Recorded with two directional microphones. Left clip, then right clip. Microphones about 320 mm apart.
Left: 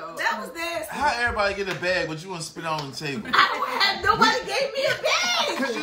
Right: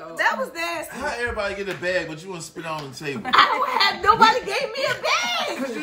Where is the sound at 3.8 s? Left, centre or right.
Right.